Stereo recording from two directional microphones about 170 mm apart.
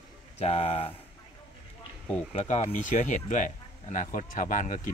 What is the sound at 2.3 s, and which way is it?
Speech, 40° left (ahead or behind).